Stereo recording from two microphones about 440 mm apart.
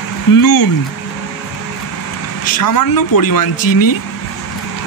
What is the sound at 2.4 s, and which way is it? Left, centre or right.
Speech, left.